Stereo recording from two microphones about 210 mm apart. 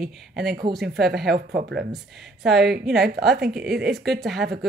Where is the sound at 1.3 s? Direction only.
50° right (ahead or behind).